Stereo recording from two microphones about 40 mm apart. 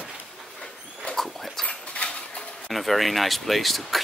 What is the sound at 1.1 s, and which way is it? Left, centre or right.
Dog, centre.